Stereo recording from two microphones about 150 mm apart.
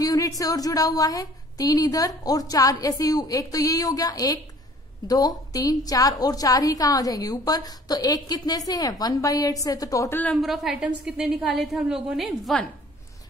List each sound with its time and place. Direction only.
0.0 s a sound: 25° left (ahead or behind)
0.4 s a woman's voice: 25° left (ahead or behind)
10.3 s a woman's voice: centre (ahead or behind)